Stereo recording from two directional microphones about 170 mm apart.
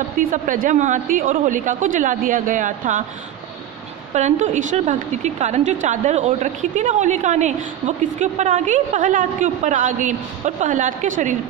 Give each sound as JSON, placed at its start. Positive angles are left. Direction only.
{"t": 0.2, "sound": "a woman's voice", "side_deg": -50}
{"t": 4.1, "sound": "a woman's voice", "side_deg": -45}